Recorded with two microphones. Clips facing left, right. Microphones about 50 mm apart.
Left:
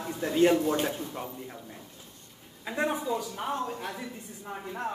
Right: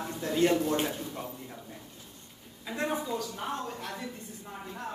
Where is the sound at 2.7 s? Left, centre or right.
Centre.